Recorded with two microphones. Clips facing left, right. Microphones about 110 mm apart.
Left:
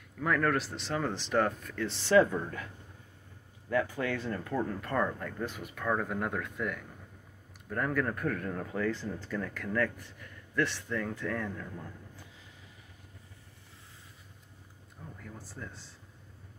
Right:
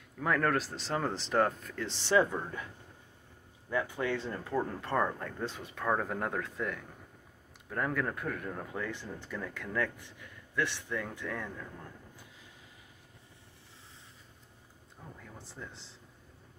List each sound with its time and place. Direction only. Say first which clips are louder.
0.2 s speech: left 1 dB; 30° right (ahead or behind)
3.7 s speech: left 2 dB; 20° right (ahead or behind)
7.7 s speech: left 2 dB; 20° right (ahead or behind)
15.3 s speech: even; 20° right (ahead or behind)